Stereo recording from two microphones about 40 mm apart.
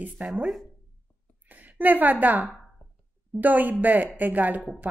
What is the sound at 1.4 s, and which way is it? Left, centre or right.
A woman's voice, right.